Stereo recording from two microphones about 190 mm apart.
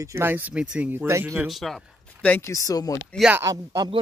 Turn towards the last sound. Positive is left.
turn(degrees=-20)  # may be behind; listen again after turning